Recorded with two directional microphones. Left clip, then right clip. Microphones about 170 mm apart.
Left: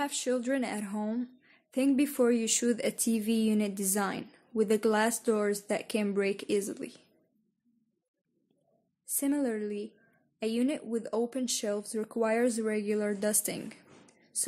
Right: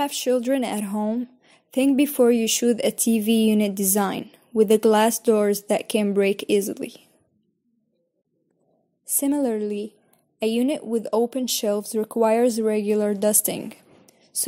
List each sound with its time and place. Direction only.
0.0 s speech: 25° right (ahead or behind)
9.0 s speech: 25° right (ahead or behind)